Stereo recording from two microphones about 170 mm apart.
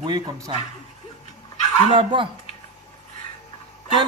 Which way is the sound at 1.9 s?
30° right (ahead or behind).